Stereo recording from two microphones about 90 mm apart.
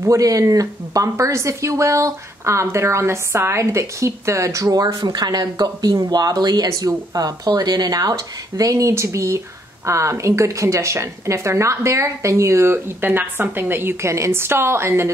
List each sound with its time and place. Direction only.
0.0 s speech: 40° right (ahead or behind)